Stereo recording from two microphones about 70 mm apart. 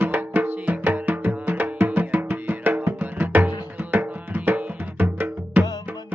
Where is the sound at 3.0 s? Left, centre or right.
Right.